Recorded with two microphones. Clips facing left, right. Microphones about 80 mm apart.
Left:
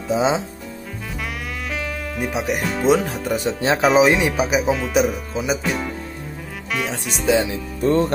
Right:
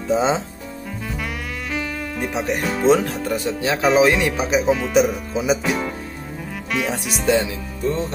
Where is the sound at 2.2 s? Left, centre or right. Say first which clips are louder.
Even; centre.